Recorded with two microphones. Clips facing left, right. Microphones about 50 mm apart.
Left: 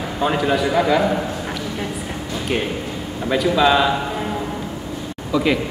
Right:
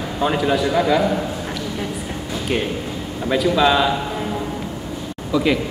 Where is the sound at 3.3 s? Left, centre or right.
Centre.